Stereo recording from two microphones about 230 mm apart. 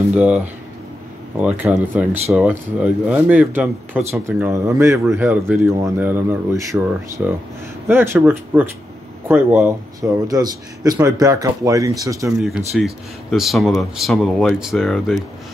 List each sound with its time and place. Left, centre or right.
0.1 s speech: centre
1.4 s speech: centre
12.4 s speech: centre